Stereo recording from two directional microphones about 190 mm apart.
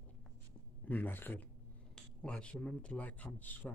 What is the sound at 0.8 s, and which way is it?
Speech, 10° left (ahead or behind).